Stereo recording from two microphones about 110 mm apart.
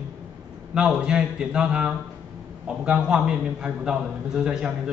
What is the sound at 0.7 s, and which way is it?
A man's voice, 10° right (ahead or behind).